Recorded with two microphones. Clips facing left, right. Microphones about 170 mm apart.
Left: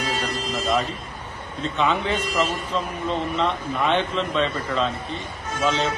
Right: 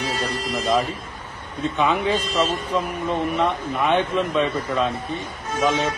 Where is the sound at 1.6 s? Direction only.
10° right (ahead or behind).